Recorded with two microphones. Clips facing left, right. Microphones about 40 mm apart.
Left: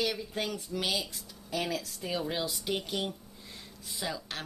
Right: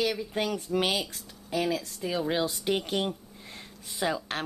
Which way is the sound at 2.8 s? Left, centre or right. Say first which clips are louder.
Right 5 dB; right.